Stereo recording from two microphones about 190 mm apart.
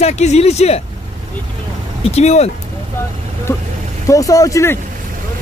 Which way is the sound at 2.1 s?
35° left (ahead or behind).